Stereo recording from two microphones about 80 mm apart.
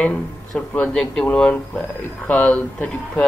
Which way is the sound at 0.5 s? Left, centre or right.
Centre.